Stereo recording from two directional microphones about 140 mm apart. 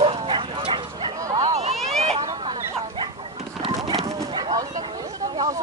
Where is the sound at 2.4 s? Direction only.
35° right (ahead or behind).